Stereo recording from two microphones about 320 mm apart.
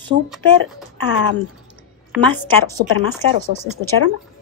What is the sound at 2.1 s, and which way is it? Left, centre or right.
Speech, centre.